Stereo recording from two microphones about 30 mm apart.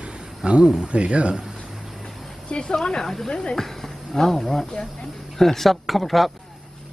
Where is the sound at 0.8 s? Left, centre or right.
Right.